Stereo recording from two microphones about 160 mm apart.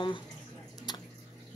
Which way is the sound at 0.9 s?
25° left (ahead or behind).